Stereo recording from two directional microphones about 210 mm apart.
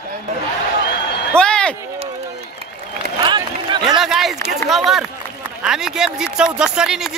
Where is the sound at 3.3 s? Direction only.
20° right (ahead or behind).